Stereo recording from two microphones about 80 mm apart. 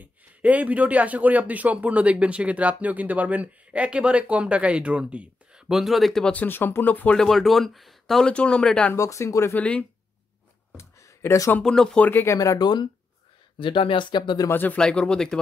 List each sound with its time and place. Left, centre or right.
0.0 s speech: centre
6.3 s speech: left
7.2 s speech: centre
8.3 s speech: centre
8.9 s speech: left
9.6 s speech: centre
10.8 s a sound: left
11.6 s speech: centre
12.0 s speech: left
12.5 s speech: left
13.6 s speech: left
14.5 s speech: left
14.8 s speech: centre